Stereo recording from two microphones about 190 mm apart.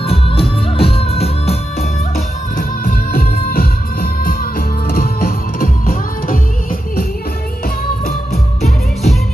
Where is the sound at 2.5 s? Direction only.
50° left (ahead or behind).